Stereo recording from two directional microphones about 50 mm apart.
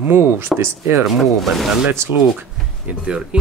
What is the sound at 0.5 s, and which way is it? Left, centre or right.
Speech, right.